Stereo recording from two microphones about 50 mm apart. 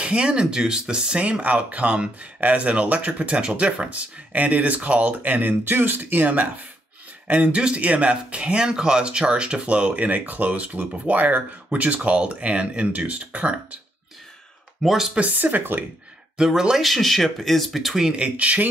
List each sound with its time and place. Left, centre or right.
0.0 s speech: right
14.8 s speech: centre
15.1 s speech: right
16.3 s speech: centre
16.8 s speech: centre
18.1 s speech: right